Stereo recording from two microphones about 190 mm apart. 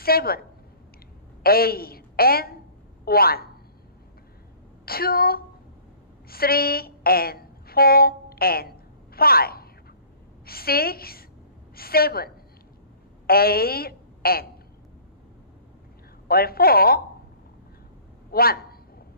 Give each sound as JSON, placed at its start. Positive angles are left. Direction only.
{"t": 0.0, "sound": "a woman's voice", "side_deg": 55}
{"t": 4.8, "sound": "a woman's voice", "side_deg": 55}
{"t": 13.3, "sound": "a woman's voice", "side_deg": 55}
{"t": 16.3, "sound": "a woman's voice", "side_deg": 55}
{"t": 18.3, "sound": "a man's voice", "side_deg": 55}